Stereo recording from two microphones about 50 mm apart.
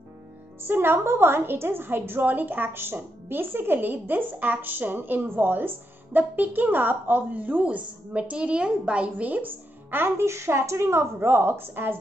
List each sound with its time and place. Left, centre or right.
0.7 s a woman's voice: right